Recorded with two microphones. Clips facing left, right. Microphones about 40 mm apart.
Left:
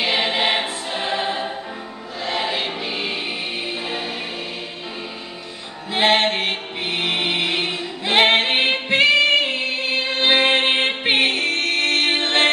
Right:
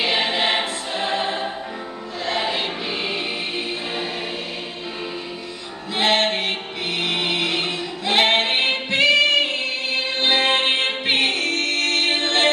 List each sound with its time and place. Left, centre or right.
0.0 s choir: centre
5.9 s music: left